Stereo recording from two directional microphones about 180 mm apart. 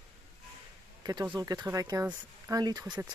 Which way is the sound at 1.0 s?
20° right (ahead or behind).